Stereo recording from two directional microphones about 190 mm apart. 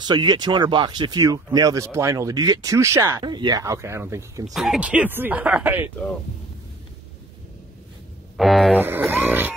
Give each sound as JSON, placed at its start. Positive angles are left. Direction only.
{"t": 0.0, "sound": "speech", "side_deg": -20}
{"t": 4.6, "sound": "speech", "side_deg": -5}
{"t": 8.4, "sound": "speech", "side_deg": 0}
{"t": 8.8, "sound": "speech", "side_deg": -10}